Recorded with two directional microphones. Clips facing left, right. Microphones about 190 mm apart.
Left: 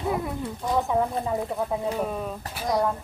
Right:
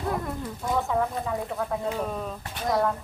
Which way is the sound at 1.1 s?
25° left (ahead or behind).